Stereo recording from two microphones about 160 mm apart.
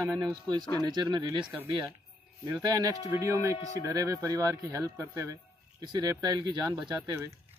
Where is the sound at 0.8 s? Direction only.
25° right (ahead or behind).